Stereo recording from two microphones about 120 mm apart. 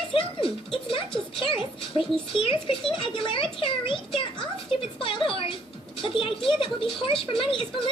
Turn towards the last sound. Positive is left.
turn(degrees=45)  # may be behind; listen again after turning